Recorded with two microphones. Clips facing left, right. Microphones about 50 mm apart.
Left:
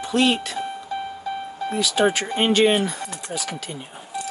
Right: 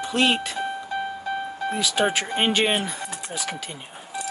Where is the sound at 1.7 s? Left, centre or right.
Right.